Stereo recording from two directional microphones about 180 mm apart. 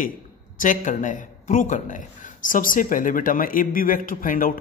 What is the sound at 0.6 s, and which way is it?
A man's voice, 45° left (ahead or behind).